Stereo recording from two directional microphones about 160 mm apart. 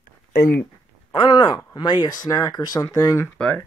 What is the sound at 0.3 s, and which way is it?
Speech, 75° left (ahead or behind).